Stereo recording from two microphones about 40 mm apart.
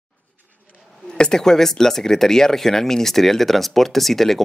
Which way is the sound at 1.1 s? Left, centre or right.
Left.